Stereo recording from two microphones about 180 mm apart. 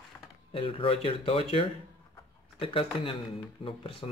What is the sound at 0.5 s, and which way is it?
Speech, 30° left (ahead or behind).